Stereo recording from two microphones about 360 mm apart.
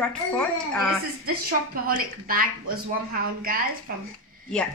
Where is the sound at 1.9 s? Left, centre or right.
Right.